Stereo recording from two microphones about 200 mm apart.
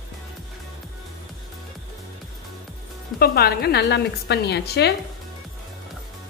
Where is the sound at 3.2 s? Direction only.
50° left (ahead or behind).